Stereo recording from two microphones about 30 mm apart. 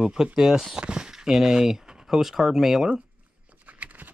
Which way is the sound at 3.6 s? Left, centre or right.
Right.